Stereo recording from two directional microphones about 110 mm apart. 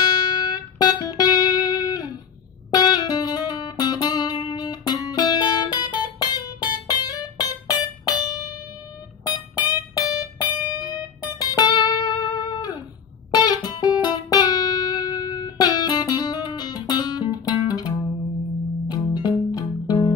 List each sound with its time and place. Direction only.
0.0 s music: 35° left (ahead or behind)